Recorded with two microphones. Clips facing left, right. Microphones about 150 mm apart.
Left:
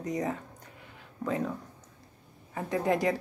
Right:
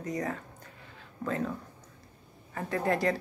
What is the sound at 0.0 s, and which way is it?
Speech, 20° left (ahead or behind).